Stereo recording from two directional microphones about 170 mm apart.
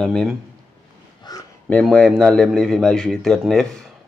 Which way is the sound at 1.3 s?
25° left (ahead or behind).